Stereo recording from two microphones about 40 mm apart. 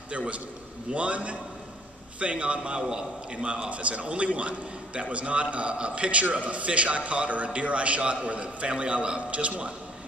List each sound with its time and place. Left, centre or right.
0.8 s a man's voice: right
3.4 s a man's voice: right